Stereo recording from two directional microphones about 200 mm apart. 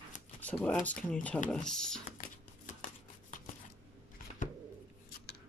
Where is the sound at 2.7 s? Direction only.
40° left (ahead or behind).